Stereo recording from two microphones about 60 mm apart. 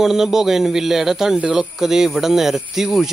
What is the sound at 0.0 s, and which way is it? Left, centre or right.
Speech, centre.